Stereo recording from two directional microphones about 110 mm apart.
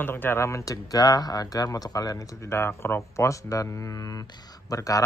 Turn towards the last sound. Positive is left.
turn(degrees=30)  # may be behind; listen again after turning